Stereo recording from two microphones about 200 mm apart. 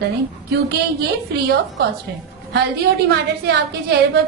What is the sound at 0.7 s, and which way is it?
A woman's voice, 55° right (ahead or behind).